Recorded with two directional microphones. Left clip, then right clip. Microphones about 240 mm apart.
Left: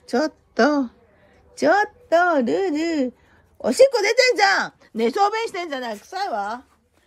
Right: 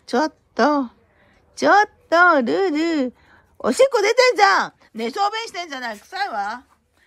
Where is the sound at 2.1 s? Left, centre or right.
Right.